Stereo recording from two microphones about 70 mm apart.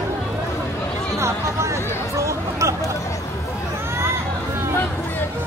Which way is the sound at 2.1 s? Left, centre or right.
Right.